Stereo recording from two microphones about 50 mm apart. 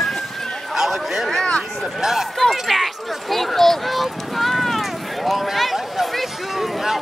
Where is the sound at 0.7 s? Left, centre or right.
Centre.